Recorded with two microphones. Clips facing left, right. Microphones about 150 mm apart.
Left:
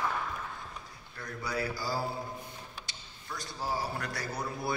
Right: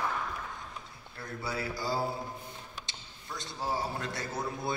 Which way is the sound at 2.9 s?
25° right (ahead or behind).